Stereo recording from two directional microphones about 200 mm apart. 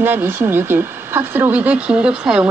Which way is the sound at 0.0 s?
10° right (ahead or behind).